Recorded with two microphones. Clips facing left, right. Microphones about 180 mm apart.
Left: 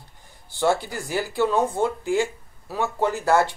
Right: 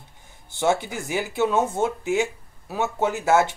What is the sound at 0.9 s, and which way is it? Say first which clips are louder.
Speech: even; centre (ahead or behind).